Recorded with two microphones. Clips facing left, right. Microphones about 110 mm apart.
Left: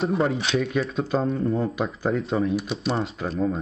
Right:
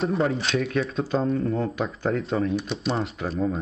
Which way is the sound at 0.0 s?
Centre (ahead or behind).